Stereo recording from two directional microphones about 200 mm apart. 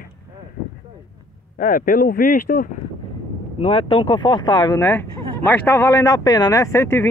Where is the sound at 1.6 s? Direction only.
45° left (ahead or behind).